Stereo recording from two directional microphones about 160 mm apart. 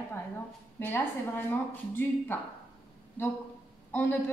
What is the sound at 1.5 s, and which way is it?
Speech, 10° left (ahead or behind).